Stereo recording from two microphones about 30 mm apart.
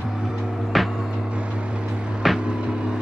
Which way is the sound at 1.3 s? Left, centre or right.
Right.